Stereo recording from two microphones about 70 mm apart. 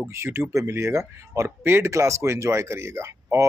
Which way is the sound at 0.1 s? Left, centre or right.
Right.